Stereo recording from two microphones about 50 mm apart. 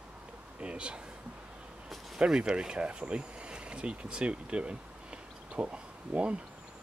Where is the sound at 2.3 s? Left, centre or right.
Centre.